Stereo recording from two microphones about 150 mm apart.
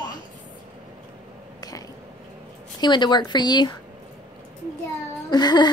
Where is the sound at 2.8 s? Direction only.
30° left (ahead or behind).